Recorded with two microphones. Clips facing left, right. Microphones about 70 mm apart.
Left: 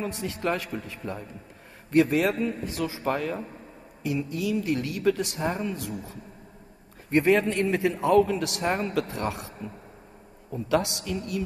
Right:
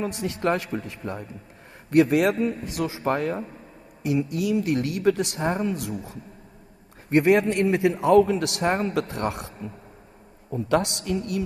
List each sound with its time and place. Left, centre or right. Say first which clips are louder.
0.3 s a man's voice: right 5 dB; right
3.0 s speech: right 4 dB; right
4.1 s a man's voice: right 4 dB; right
7.1 s a man's voice: right 3 dB; right